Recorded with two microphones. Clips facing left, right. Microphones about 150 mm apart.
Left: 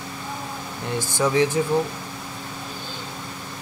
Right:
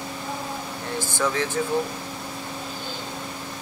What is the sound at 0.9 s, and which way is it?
Speech, 15° left (ahead or behind).